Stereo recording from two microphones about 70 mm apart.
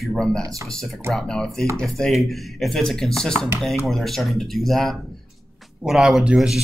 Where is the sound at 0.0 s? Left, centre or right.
Centre.